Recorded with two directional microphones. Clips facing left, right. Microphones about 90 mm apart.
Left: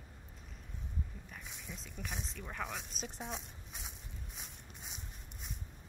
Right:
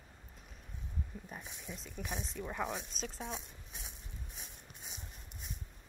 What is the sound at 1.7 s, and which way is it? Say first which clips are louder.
Speech: right 3 dB; 5° right (ahead or behind).